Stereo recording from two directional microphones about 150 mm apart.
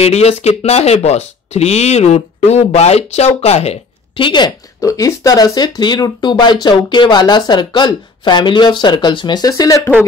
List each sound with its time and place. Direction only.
0.0 s speech: 45° left (ahead or behind); by 9.8 s 20° left (ahead or behind)